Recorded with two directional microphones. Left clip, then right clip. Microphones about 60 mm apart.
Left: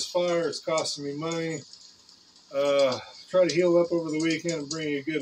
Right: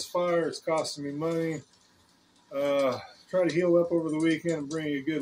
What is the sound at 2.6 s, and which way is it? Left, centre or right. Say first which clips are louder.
Speech: left 3 dB; right.